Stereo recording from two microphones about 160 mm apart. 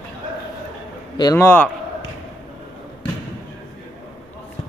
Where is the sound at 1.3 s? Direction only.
10° left (ahead or behind).